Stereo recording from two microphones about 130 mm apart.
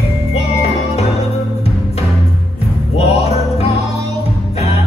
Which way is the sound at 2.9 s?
55° left (ahead or behind).